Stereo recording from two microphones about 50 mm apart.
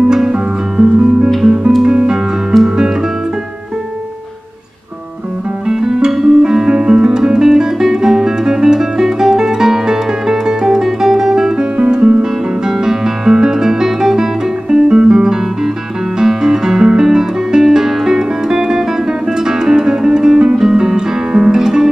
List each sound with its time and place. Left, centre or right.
0.7 s music: centre
2.5 s music: centre
5.7 s music: centre
11.7 s guitar: centre
16.2 s music: centre